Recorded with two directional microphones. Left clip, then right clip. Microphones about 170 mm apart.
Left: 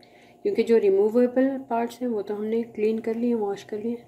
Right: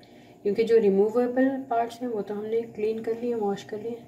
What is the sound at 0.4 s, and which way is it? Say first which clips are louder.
Speech: left 1 dB; 70° left (ahead or behind).